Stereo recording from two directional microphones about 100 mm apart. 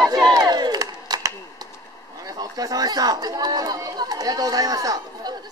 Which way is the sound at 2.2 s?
40° right (ahead or behind).